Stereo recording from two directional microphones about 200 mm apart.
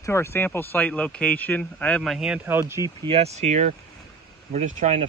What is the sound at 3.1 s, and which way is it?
Speech, 30° right (ahead or behind).